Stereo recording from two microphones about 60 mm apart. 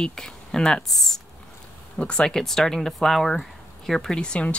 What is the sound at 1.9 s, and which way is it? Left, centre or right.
Speech, centre.